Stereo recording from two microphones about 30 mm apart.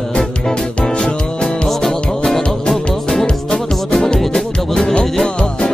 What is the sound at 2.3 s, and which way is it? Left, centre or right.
Music, centre.